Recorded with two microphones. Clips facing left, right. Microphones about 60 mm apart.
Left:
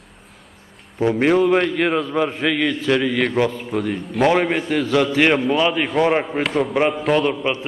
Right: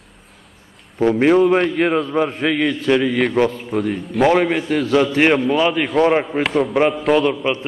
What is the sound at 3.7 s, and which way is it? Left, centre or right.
Speech, centre.